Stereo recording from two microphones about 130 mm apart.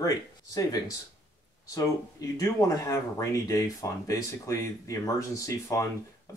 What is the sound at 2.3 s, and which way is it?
Speech, 25° left (ahead or behind).